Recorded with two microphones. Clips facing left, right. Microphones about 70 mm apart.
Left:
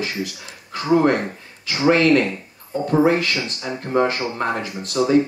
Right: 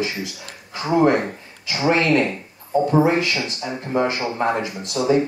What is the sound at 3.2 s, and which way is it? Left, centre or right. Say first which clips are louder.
Speech: right 1 dB; right.